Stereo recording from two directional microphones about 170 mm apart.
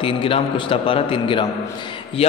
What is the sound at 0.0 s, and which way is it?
A man's voice, 30° left (ahead or behind).